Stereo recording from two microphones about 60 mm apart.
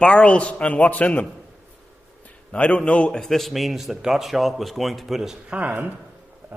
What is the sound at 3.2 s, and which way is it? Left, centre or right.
Speech, centre.